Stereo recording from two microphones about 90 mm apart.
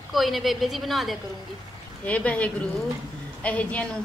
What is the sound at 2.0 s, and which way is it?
A woman's voice, 15° left (ahead or behind).